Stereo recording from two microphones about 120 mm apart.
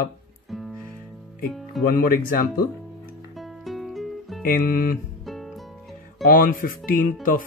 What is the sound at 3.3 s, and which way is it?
Music, centre (ahead or behind).